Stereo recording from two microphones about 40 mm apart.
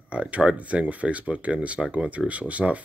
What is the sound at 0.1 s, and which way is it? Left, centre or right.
Speech, right.